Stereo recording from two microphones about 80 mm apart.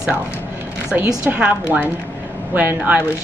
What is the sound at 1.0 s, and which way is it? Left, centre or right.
Speech, centre.